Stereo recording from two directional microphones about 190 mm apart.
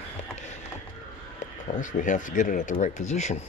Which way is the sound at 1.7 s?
40° left (ahead or behind).